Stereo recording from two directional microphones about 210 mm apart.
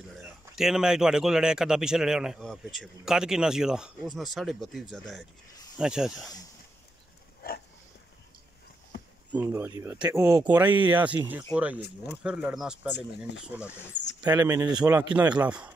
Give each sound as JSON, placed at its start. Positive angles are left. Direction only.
{"t": 0.6, "sound": "a man's voice", "side_deg": 0}
{"t": 8.9, "sound": "a sound", "side_deg": 50}
{"t": 9.3, "sound": "speech", "side_deg": -10}
{"t": 15.4, "sound": "speech", "side_deg": -5}